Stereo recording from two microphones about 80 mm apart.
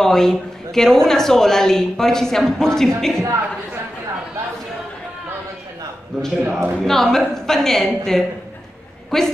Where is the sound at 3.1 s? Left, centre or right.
Right.